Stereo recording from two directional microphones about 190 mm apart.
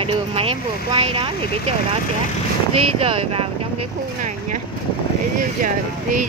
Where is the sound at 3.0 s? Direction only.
30° right (ahead or behind).